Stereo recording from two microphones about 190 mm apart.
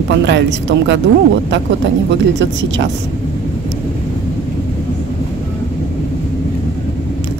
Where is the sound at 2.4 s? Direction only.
70° right (ahead or behind).